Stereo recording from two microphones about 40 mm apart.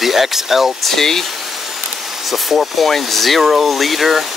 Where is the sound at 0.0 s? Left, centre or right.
Centre.